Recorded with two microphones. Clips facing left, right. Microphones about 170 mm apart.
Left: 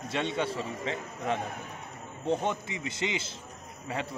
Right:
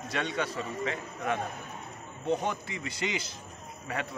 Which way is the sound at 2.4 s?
20° left (ahead or behind).